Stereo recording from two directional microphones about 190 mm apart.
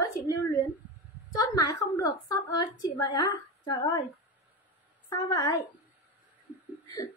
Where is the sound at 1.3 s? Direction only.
20° left (ahead or behind).